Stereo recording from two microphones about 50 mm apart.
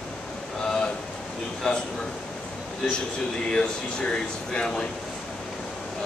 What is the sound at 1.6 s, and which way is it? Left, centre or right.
Speech, centre.